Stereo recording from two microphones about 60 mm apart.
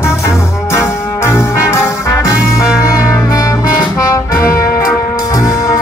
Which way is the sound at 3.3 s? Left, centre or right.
Left.